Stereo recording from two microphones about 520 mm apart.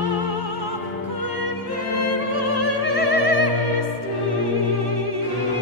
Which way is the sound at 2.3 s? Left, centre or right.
Right.